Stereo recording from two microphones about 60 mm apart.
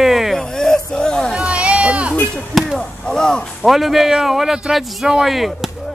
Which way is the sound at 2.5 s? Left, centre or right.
Centre.